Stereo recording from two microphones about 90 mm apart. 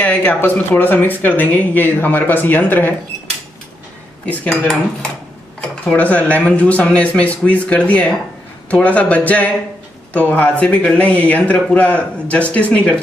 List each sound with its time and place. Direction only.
0.0 s speech: 20° left (ahead or behind)
4.3 s speech: 10° left (ahead or behind)